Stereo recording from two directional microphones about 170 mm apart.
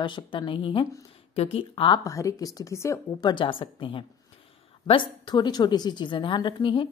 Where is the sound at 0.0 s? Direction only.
25° left (ahead or behind).